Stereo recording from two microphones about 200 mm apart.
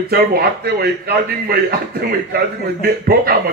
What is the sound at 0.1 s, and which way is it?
Speech, 50° right (ahead or behind).